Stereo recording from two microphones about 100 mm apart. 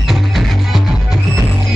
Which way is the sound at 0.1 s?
Centre (ahead or behind).